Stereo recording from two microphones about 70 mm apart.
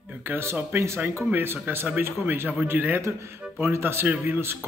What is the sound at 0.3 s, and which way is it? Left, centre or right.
Speech, right.